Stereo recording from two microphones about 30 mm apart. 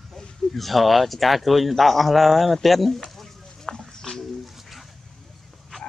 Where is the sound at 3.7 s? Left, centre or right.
Left.